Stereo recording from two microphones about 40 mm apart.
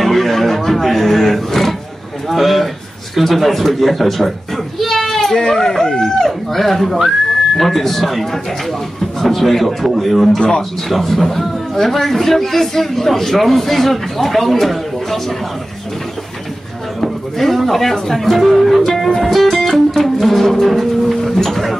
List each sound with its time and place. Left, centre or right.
0.0 s a man's voice: centre
17.0 s a man's voice: centre
19.0 s music: centre
21.2 s a sound: centre